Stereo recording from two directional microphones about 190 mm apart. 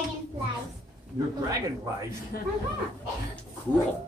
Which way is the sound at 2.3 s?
50° left (ahead or behind).